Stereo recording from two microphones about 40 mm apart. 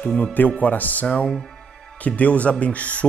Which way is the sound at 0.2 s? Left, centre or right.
Left.